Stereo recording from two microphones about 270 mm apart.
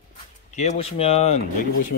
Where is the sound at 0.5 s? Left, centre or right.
Left.